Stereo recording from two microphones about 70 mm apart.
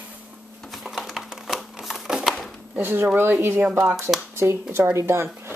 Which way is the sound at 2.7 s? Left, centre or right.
Right.